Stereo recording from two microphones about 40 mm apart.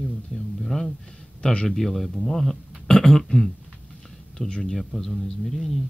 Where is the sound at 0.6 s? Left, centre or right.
Centre.